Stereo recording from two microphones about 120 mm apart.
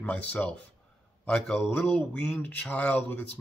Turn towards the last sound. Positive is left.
turn(degrees=15)  # may be behind; listen again after turning